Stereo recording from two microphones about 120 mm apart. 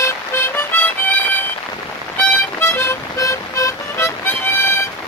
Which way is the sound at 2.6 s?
20° left (ahead or behind).